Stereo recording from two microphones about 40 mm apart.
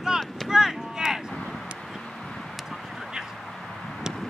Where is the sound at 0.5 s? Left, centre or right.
Centre.